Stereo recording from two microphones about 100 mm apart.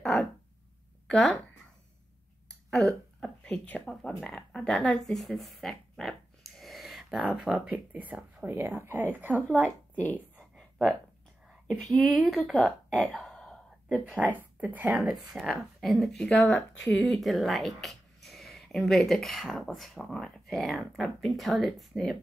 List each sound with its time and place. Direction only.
1.0 s speech: 5° left (ahead or behind)
2.4 s speech: 5° left (ahead or behind)
7.5 s a woman's voice: 15° right (ahead or behind)
9.9 s speech: 15° left (ahead or behind)
10.5 s a sound: 5° left (ahead or behind)
11.6 s speech: 5° left (ahead or behind)
12.4 s a sound: 5° left (ahead or behind)
14.1 s speech: 20° right (ahead or behind)
15.0 s speech: 5° right (ahead or behind)
15.9 s speech: 10° left (ahead or behind)